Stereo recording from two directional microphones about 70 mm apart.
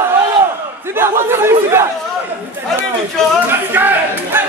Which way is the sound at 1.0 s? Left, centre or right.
Right.